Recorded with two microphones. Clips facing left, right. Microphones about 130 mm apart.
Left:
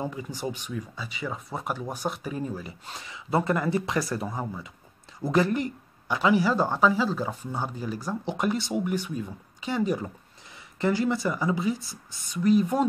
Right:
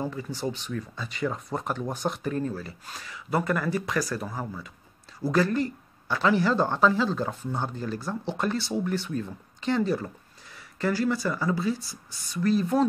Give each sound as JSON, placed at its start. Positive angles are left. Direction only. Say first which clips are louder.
{"t": 0.0, "sound": "speech", "louder": "right 1 dB", "side_deg": 15}